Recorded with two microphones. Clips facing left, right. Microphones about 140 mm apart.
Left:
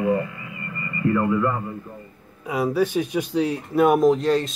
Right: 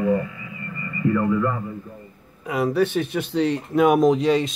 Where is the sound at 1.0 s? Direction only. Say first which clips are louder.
Even; 65° left (ahead or behind).